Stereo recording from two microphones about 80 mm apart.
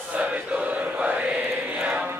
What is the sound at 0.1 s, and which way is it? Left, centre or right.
Chant, centre.